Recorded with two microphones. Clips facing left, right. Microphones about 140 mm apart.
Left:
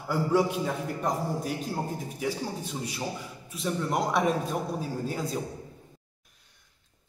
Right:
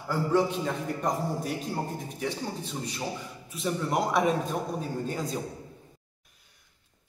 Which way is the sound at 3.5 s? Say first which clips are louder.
Even; centre (ahead or behind).